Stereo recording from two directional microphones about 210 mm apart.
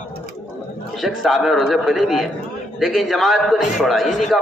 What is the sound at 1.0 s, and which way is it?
A man's voice, centre (ahead or behind).